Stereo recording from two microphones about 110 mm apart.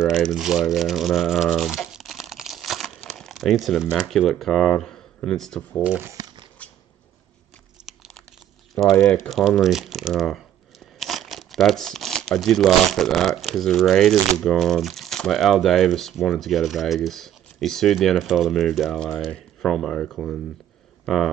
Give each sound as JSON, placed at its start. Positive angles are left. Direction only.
{"t": 0.0, "sound": "speech", "side_deg": 0}
{"t": 3.1, "sound": "a sound", "side_deg": 0}
{"t": 3.5, "sound": "speech", "side_deg": -5}
{"t": 6.0, "sound": "a sound", "side_deg": -35}
{"t": 7.8, "sound": "crumpling", "side_deg": -5}
{"t": 8.9, "sound": "speech", "side_deg": 20}
{"t": 9.2, "sound": "speech", "side_deg": 5}